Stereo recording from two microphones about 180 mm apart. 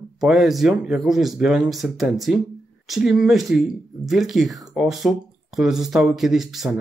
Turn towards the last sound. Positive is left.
turn(degrees=0)  # may be behind; listen again after turning